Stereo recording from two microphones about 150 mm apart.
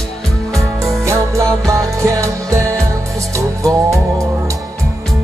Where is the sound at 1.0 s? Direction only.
20° right (ahead or behind).